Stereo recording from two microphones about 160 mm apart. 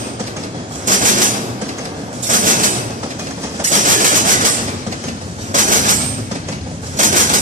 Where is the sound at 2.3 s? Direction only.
55° right (ahead or behind).